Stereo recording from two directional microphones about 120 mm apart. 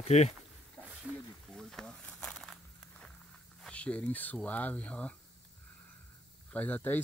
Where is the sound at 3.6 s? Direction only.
10° left (ahead or behind).